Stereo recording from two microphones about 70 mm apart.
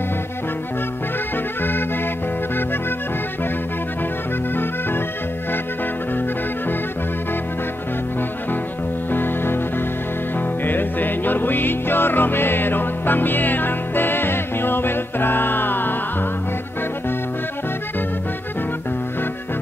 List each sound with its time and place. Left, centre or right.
1.6 s music: left
9.1 s music: left